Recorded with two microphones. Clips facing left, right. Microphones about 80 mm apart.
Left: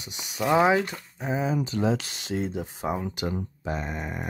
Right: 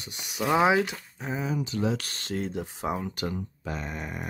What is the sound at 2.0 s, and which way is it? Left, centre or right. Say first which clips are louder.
Speech: left 2 dB; centre.